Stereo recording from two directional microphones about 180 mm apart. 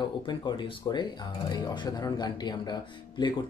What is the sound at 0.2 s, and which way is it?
Speech, 25° left (ahead or behind).